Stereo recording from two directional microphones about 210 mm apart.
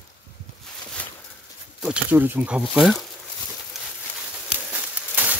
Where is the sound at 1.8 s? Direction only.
5° right (ahead or behind).